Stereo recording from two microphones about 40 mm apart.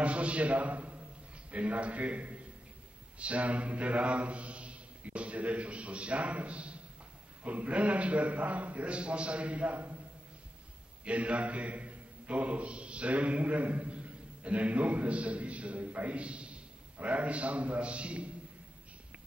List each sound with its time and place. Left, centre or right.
0.0 s mantra: right
11.1 s a man's voice: right